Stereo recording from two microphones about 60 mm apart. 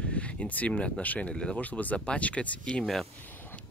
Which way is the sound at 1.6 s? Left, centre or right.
Left.